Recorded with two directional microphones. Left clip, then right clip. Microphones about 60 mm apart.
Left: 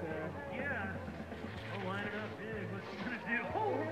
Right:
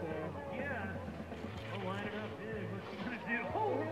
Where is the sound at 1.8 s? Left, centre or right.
Left.